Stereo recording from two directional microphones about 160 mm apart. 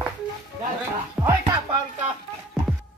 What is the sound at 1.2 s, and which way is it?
Music, 5° right (ahead or behind).